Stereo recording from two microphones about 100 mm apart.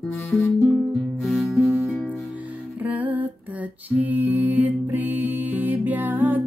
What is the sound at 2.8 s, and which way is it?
Music, 15° right (ahead or behind).